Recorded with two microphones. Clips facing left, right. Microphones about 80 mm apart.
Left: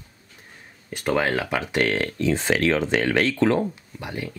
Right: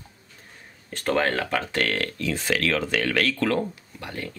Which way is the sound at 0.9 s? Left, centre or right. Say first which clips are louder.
Left 1 dB; centre.